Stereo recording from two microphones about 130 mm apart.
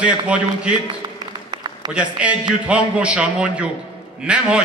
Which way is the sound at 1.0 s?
35° right (ahead or behind).